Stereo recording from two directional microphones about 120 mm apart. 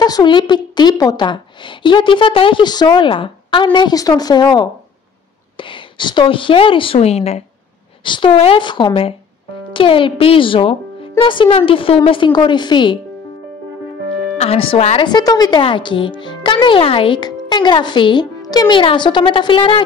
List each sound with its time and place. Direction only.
0.0 s a woman's voice: 35° left (ahead or behind); by 7.4 s 60° left (ahead or behind)
8.0 s a woman's voice: 45° left (ahead or behind)
14.4 s a child's voice: 50° left (ahead or behind)
15.0 s a woman's voice: 35° left (ahead or behind)
15.6 s a child's voice: 45° left (ahead or behind)